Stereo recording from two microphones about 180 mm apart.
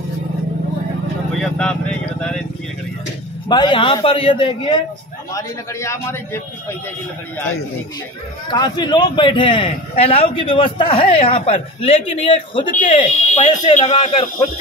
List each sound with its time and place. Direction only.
1.4 s vehicle: 5° left (ahead or behind)
3.4 s a man's voice: 25° left (ahead or behind)
5.3 s a man's voice: 15° left (ahead or behind)
8.5 s a man's voice: 25° left (ahead or behind)
12.9 s speech: 40° left (ahead or behind)
13.4 s a man's voice: 25° left (ahead or behind)